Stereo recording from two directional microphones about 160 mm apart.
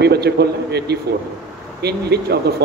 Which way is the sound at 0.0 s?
90° right.